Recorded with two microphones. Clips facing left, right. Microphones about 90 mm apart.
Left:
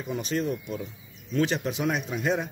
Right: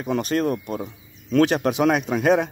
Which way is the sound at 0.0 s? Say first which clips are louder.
Right 7 dB; 65° right (ahead or behind).